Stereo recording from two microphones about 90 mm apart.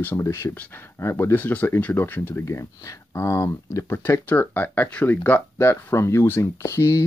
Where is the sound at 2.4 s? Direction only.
35° left (ahead or behind).